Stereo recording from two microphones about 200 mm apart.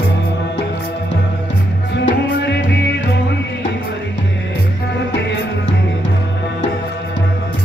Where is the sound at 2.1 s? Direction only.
60° left (ahead or behind).